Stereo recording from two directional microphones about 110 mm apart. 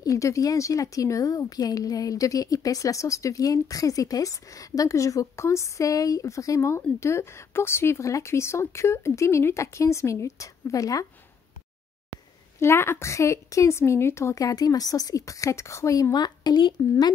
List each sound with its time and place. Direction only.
0.0 s speech: 30° left (ahead or behind)
12.5 s speech: 25° left (ahead or behind); by 16.7 s 40° left (ahead or behind)